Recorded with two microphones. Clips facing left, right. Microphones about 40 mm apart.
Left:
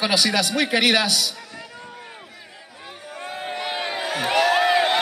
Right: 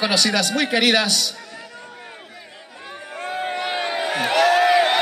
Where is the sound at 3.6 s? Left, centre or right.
Centre.